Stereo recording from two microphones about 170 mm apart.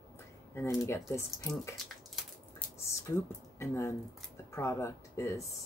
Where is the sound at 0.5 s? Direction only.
15° left (ahead or behind).